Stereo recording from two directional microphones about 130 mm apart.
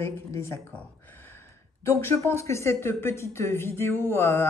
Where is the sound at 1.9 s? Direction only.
20° left (ahead or behind).